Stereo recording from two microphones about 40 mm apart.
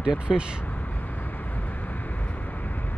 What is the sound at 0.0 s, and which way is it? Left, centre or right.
Speech, centre.